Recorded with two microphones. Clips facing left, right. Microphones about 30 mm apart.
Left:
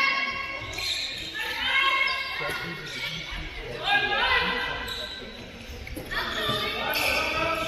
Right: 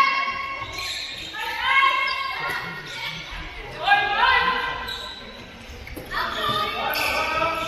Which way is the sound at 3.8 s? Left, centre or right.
Centre.